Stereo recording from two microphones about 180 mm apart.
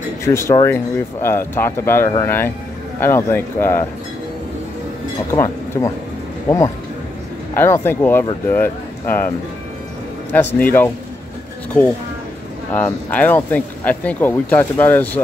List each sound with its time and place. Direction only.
0.2 s speech: 15° left (ahead or behind)
5.3 s speech: 15° left (ahead or behind)
7.5 s speech: 15° left (ahead or behind)
10.3 s speech: 10° left (ahead or behind)
12.7 s speech: 10° left (ahead or behind)